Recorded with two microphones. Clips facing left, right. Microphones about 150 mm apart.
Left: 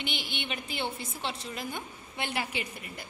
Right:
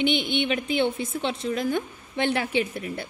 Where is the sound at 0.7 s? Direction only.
80° right.